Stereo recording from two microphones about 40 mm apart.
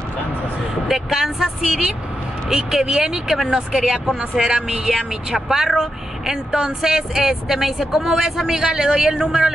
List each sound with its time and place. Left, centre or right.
0.8 s speech: centre
7.8 s speech: centre